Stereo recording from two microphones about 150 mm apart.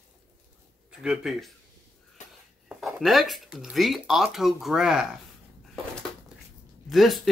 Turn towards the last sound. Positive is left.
turn(degrees=0)  # may be behind; listen again after turning